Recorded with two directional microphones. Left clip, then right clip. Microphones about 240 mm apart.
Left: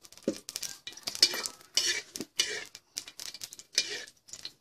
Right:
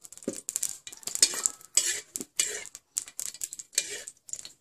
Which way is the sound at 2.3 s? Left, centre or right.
Centre.